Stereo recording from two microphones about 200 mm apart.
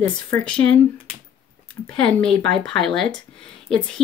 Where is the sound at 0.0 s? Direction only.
5° left (ahead or behind).